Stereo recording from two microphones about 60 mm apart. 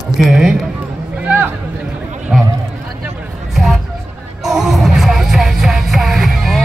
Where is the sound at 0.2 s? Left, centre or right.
Centre.